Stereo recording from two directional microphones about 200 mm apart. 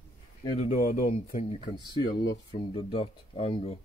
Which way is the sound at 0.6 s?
40° left (ahead or behind).